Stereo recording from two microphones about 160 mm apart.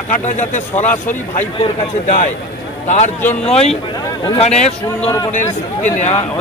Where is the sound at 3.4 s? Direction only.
40° left (ahead or behind).